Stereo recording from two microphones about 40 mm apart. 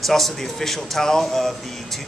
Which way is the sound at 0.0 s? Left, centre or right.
Centre.